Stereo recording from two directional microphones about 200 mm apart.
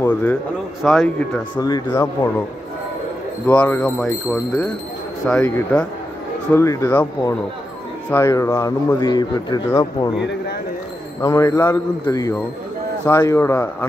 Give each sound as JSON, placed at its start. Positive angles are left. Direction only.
{"t": 0.0, "sound": "speech", "side_deg": 5}
{"t": 1.6, "sound": "speech", "side_deg": 15}
{"t": 3.4, "sound": "speech", "side_deg": 10}
{"t": 11.1, "sound": "speech", "side_deg": 15}